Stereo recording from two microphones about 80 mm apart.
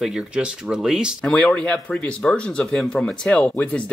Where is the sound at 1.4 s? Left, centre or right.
Centre.